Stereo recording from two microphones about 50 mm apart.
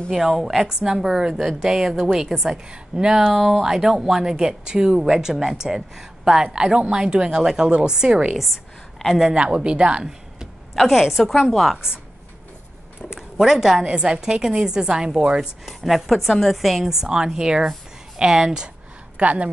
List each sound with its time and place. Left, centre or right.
0.1 s a woman's voice: centre
3.3 s a woman's voice: centre
10.8 s a woman's voice: centre
13.1 s speech: centre
15.6 s speech: centre
19.1 s speech: right